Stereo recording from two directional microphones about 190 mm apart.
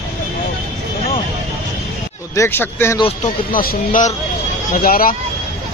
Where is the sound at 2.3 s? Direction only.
15° left (ahead or behind).